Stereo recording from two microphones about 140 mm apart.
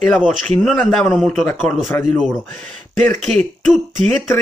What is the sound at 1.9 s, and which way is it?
Speech, 20° left (ahead or behind).